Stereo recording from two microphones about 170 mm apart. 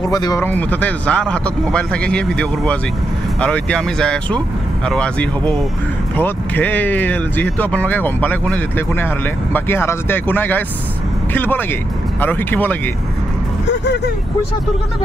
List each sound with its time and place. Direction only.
0.1 s speech: 20° left (ahead or behind)
0.5 s speech: 10° left (ahead or behind)